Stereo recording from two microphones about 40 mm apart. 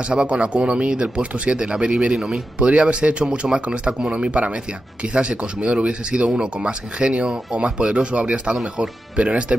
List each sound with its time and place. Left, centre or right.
0.1 s speech: right
2.1 s speech: centre
2.6 s speech: right
3.3 s speech: centre
3.6 s speech: right